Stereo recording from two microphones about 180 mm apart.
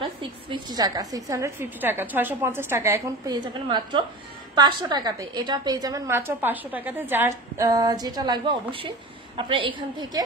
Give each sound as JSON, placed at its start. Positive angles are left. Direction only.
{"t": 0.2, "sound": "a woman's voice", "side_deg": -25}
{"t": 3.6, "sound": "a woman's voice", "side_deg": -25}